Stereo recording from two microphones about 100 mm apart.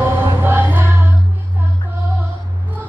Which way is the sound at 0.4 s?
20° right (ahead or behind).